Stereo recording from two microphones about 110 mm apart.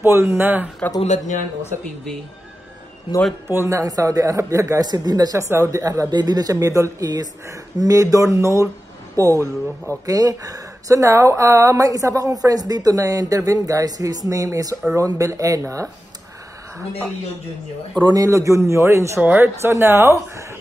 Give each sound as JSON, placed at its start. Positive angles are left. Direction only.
{"t": 0.0, "sound": "speech", "side_deg": -20}
{"t": 1.0, "sound": "speech", "side_deg": 90}
{"t": 3.4, "sound": "speech", "side_deg": -25}
{"t": 18.0, "sound": "speech", "side_deg": -30}